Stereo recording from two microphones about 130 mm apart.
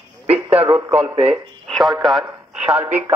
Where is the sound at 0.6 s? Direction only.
45° right (ahead or behind).